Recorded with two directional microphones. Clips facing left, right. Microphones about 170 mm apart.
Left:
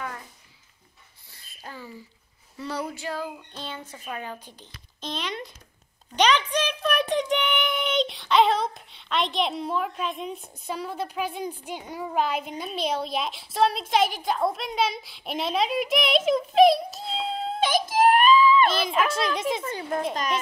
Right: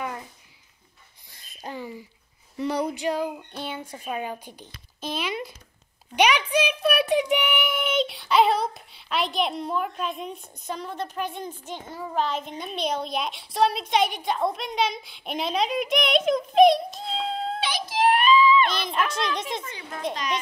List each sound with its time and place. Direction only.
1.3 s a sound: 20° right (ahead or behind)
2.5 s a woman's voice: 15° right (ahead or behind); by 17.6 s centre (ahead or behind)
17.6 s baby cry: 45° left (ahead or behind)
18.7 s a child's voice: 5° left (ahead or behind)
19.6 s speech: 45° left (ahead or behind)